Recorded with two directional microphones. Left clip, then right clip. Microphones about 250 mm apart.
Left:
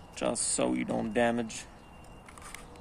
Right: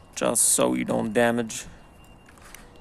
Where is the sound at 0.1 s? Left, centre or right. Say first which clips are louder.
Right 7 dB; right.